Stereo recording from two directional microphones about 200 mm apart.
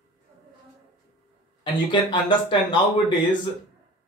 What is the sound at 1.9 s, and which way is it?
Speech, 25° left (ahead or behind).